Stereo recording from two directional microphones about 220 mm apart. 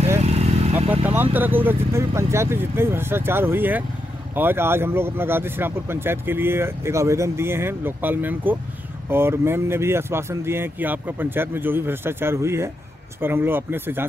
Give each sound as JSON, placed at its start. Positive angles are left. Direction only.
{"t": 0.2, "sound": "vehicle", "side_deg": -30}
{"t": 1.0, "sound": "speech", "side_deg": -10}